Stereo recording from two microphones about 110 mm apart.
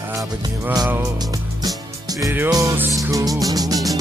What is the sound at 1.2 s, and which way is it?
Music, 35° right (ahead or behind).